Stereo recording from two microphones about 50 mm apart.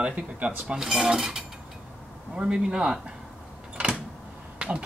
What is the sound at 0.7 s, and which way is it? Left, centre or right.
Speech, centre.